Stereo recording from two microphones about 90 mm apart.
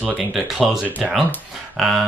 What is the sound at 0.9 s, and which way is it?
Speech, 15° right (ahead or behind).